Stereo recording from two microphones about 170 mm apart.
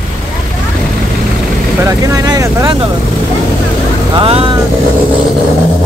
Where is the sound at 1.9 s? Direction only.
20° right (ahead or behind).